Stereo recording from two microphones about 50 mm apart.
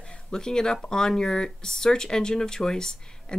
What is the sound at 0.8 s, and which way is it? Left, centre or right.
A woman's voice, centre.